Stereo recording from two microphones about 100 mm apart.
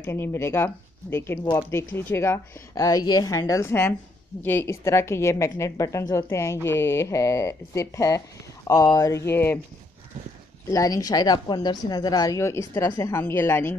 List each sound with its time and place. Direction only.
0.0 s a woman's voice: 25° left (ahead or behind)
1.4 s speech: 40° left (ahead or behind)
1.7 s a woman's voice: 25° left (ahead or behind)
10.7 s a woman's voice: 35° left (ahead or behind)